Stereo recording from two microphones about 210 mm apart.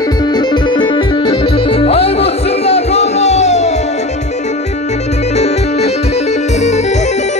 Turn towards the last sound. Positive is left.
turn(degrees=30)  # may be behind; listen again after turning